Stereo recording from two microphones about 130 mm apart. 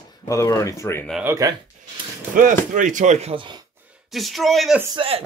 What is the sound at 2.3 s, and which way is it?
Speech, 90° right.